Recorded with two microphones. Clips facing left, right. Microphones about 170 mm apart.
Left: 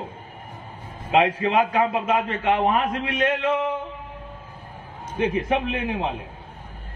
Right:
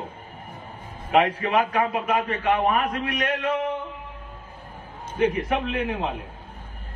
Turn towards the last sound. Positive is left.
turn(degrees=25)  # may be behind; listen again after turning